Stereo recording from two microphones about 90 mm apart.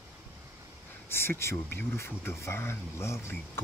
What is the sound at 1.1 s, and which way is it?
Speech, 25° left (ahead or behind).